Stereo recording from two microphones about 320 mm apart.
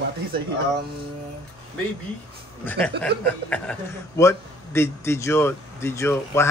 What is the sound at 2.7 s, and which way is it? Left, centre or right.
A man's voice, centre.